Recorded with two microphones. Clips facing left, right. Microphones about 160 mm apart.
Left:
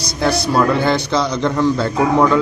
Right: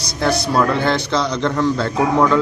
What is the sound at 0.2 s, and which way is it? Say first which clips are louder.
A man's voice: left 1 dB; 5° left (ahead or behind).